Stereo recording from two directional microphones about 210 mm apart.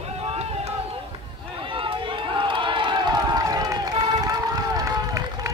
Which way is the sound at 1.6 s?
25° right (ahead or behind).